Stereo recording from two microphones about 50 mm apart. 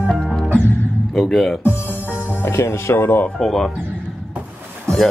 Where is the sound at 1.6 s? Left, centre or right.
Left.